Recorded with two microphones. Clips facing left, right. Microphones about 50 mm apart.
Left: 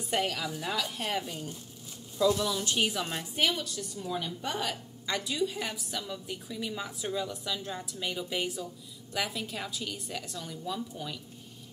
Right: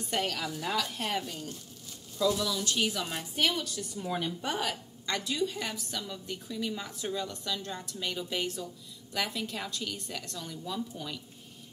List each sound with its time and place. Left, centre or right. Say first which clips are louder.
0.1 s a woman's voice: left 2 dB; centre
3.3 s a woman's voice: even; centre
3.9 s speech: right 2 dB; right
4.3 s a woman's voice: right 1 dB; centre